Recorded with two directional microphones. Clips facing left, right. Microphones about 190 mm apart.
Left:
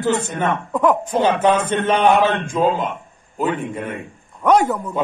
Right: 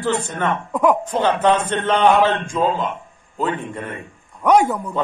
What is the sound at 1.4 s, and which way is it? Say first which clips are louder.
Speech: left 1 dB; 5° left (ahead or behind).